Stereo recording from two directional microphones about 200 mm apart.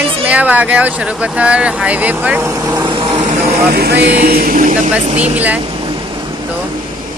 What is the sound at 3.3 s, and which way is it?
Speech, 50° right (ahead or behind).